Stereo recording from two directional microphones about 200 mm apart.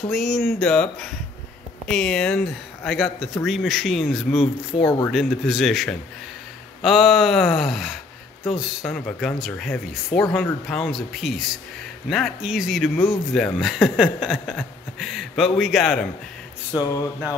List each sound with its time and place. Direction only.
0.1 s speech: centre (ahead or behind)
4.4 s speech: 25° left (ahead or behind)
5.1 s speech: centre (ahead or behind)
16.7 s speech: 20° left (ahead or behind)